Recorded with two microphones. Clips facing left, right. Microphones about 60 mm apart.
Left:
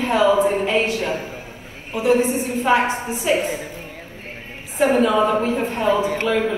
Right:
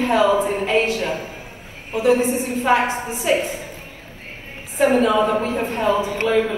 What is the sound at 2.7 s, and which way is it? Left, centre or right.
Speech, left.